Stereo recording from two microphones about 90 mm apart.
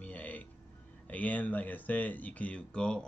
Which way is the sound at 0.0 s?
15° left (ahead or behind).